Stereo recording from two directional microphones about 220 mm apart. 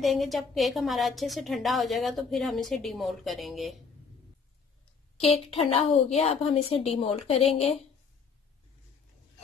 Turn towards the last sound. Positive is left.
turn(degrees=25)  # may be behind; listen again after turning